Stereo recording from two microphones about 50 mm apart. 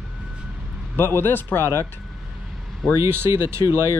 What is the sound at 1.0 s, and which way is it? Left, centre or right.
Speech, left.